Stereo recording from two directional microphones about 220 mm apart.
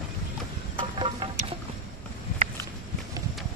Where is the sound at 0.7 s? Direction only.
25° right (ahead or behind).